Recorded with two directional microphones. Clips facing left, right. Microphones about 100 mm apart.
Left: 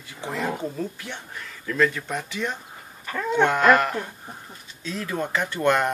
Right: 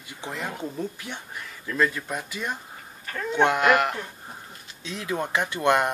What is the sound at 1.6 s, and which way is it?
Speech, 10° right (ahead or behind).